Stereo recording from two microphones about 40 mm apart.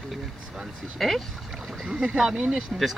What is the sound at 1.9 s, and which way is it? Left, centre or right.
Speech, right.